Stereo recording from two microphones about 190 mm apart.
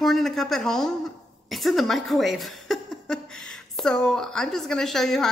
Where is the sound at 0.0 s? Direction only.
Centre (ahead or behind).